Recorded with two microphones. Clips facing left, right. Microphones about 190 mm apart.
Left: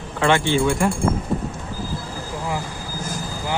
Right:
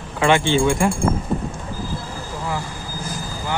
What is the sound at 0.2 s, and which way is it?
Speech, 20° right (ahead or behind).